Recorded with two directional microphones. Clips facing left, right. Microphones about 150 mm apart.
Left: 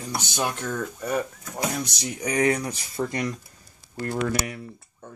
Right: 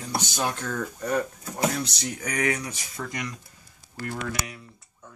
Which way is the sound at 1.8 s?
25° left (ahead or behind).